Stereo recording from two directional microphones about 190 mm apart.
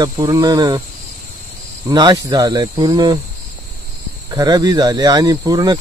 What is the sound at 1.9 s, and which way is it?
Speech, 20° right (ahead or behind).